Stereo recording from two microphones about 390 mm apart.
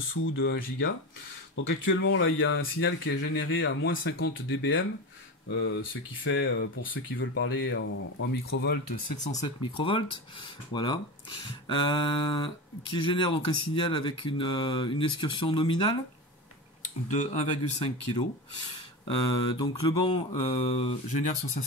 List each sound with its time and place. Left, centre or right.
0.1 s speech: left
9.2 s speech: centre
17.1 s speech: centre